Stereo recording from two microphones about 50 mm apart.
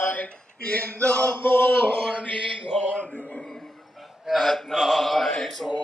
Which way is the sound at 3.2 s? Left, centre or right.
Centre.